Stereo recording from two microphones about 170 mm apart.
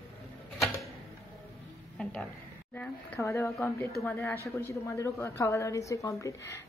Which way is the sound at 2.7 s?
15° left (ahead or behind).